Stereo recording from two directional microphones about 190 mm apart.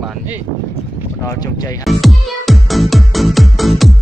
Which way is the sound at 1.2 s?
15° left (ahead or behind).